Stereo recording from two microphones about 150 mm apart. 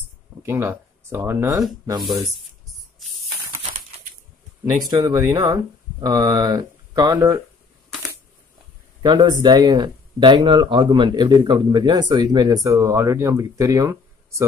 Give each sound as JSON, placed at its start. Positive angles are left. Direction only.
{"t": 0.4, "sound": "speech", "side_deg": -20}
{"t": 3.0, "sound": "spray", "side_deg": 0}
{"t": 4.8, "sound": "speech", "side_deg": -25}
{"t": 9.0, "sound": "speech", "side_deg": -30}